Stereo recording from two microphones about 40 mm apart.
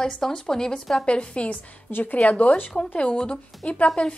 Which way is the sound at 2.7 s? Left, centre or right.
Left.